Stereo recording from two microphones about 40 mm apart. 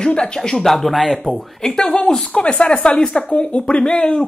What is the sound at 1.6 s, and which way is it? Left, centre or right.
Speech, centre.